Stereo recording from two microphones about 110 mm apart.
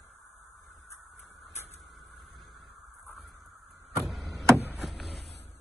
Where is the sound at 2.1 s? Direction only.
Centre (ahead or behind).